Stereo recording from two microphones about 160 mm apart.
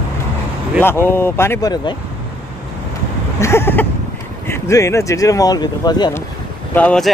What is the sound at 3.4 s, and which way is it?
Speech, 15° left (ahead or behind).